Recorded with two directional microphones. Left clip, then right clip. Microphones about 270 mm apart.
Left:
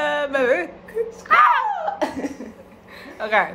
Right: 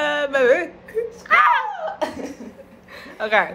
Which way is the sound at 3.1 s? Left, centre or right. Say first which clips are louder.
Right 1 dB; centre.